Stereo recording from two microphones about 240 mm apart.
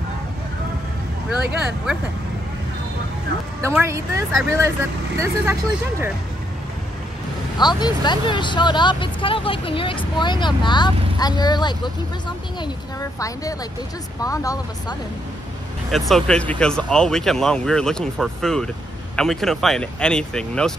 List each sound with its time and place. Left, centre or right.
3.6 s speech: centre
7.5 s speech: centre
13.2 s speech: centre
15.9 s speech: centre